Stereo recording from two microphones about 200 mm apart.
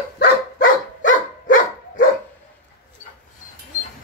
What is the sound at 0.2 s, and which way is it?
Dog, 45° left (ahead or behind).